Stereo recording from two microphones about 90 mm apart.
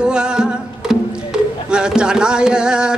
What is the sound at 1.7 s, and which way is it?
Speech, 10° right (ahead or behind).